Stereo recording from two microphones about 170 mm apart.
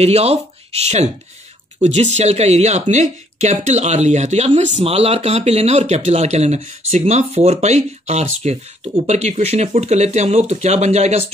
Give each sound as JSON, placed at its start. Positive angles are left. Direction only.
{"t": 0.0, "sound": "speech", "side_deg": -40}